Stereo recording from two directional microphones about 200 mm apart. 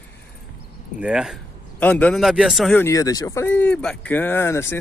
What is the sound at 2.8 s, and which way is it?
Speech, 15° left (ahead or behind).